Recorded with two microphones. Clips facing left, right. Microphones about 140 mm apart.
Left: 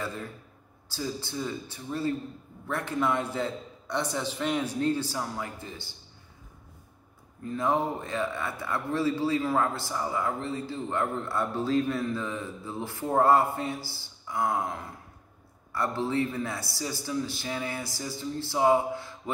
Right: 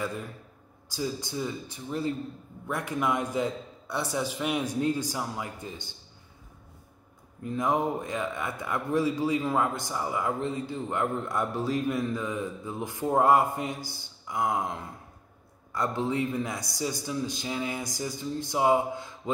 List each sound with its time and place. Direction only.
0.8 s a man's voice: 15° right (ahead or behind)
7.4 s a man's voice: 15° right (ahead or behind)
15.7 s a man's voice: 15° right (ahead or behind)